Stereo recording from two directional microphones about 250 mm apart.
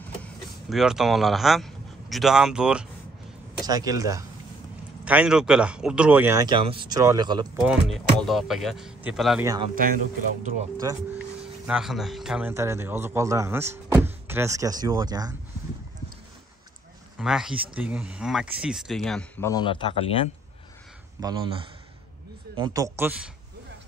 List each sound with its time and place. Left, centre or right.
0.2 s speech: centre
3.6 s a man's voice: centre
7.6 s speech: centre
9.8 s speech: right
11.6 s a man's voice: centre
17.2 s speech: centre; by 20.2 s left
21.2 s a man's voice: centre
22.6 s a man's voice: centre